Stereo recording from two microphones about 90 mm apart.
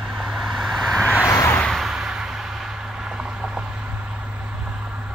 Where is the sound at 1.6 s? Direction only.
Centre (ahead or behind).